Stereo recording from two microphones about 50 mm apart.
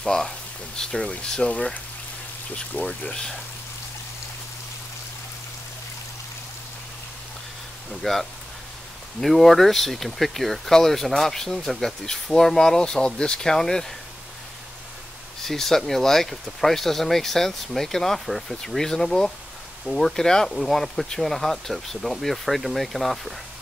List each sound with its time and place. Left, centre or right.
0.0 s speech: centre; by 3.2 s left
7.9 s speech: centre
15.4 s speech: centre